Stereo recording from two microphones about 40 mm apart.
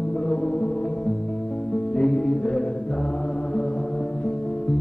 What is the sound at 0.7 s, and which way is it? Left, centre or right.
Music, left.